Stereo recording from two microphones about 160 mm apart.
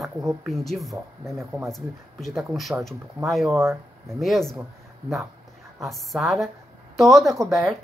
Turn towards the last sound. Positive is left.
turn(degrees=0)  # may be behind; listen again after turning